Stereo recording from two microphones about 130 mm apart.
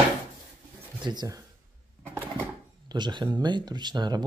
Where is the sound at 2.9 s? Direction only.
35° right (ahead or behind).